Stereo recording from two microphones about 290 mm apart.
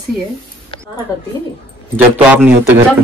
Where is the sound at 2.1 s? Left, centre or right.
Centre.